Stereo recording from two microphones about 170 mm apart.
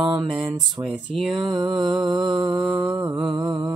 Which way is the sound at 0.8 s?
Centre (ahead or behind).